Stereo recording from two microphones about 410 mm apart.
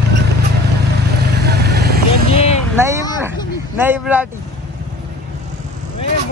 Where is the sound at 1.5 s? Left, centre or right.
Right.